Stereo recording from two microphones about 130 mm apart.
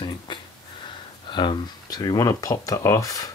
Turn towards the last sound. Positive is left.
turn(degrees=25)  # may be behind; listen again after turning